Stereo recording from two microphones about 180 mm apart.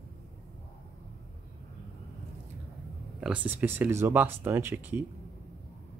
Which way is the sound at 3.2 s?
10° right (ahead or behind).